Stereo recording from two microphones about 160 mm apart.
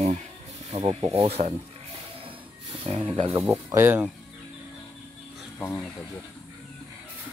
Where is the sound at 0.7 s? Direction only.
40° right (ahead or behind).